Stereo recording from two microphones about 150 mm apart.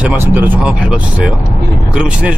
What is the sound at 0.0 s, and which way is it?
Speech, 10° right (ahead or behind).